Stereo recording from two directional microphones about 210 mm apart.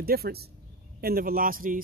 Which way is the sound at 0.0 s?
45° right (ahead or behind).